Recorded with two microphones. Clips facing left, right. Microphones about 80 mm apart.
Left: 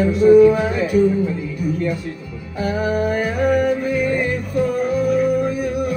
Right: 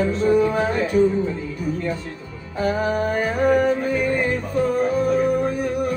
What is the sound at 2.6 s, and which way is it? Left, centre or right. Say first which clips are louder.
Music: left 1 dB; right.